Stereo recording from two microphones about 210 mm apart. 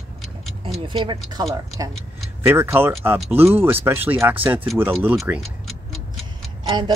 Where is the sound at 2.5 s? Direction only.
10° right (ahead or behind).